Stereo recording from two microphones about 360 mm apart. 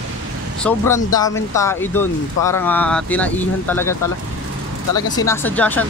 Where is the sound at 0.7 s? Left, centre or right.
Centre.